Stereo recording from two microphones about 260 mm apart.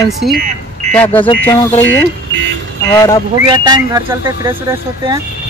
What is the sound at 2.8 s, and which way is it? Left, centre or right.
Speech, centre.